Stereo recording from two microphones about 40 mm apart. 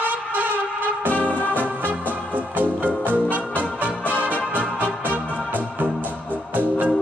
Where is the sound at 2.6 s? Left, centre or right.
Right.